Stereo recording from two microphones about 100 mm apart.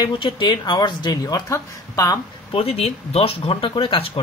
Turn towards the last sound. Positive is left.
turn(degrees=65)  # may be behind; listen again after turning